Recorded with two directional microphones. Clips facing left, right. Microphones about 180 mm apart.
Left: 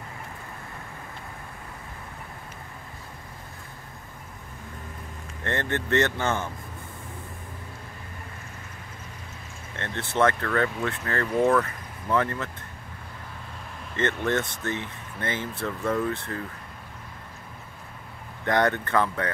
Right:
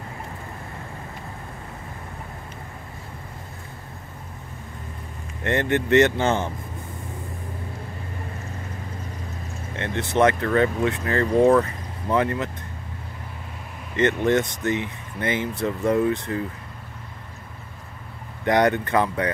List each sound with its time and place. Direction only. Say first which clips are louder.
5.4 s speech: right 6 dB; 15° right (ahead or behind)
9.8 s speech: right 4 dB; 15° right (ahead or behind)
13.9 s speech: right 6 dB; 15° right (ahead or behind)
18.4 s speech: right 4 dB; 15° right (ahead or behind)